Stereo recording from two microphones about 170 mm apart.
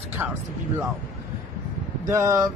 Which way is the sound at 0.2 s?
10° right (ahead or behind).